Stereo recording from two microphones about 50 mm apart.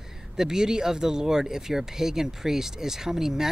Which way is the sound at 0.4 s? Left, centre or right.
Centre.